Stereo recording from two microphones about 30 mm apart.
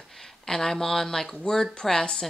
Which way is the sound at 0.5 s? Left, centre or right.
Centre.